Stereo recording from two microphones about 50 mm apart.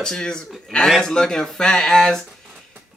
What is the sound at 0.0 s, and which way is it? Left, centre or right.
A man's voice, centre.